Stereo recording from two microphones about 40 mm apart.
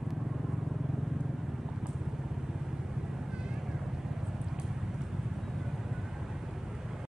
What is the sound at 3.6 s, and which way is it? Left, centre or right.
Vehicle, centre.